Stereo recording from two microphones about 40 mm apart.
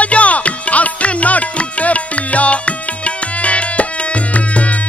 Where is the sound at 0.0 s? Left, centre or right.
Left.